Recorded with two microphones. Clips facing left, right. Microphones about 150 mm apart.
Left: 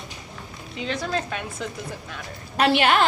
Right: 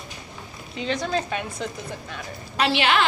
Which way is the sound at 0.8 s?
Centre (ahead or behind).